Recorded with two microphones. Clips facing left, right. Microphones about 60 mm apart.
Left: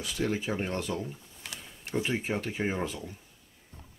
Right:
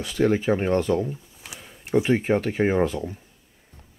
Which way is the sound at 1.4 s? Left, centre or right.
Centre.